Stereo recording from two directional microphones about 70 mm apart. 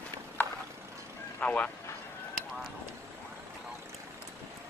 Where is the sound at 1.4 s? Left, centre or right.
Left.